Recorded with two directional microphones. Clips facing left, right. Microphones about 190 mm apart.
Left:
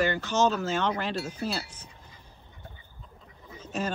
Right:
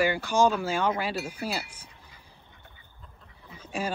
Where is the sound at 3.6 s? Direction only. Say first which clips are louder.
Even; 10° right (ahead or behind).